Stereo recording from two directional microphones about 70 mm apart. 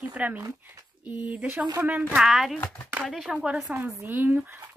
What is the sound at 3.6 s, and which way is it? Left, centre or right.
Speech, right.